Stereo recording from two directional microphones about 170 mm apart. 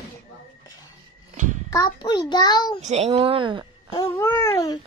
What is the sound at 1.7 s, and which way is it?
A child's voice, 25° left (ahead or behind).